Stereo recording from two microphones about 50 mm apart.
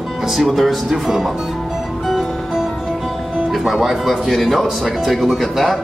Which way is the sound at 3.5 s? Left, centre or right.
Centre.